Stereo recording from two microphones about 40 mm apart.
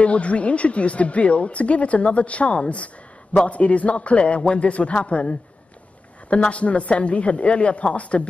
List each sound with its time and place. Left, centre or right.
0.0 s speech: left
6.3 s speech: left